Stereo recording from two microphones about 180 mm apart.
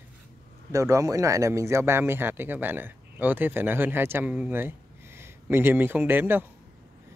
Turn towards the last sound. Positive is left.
turn(degrees=-10)  # may be behind; listen again after turning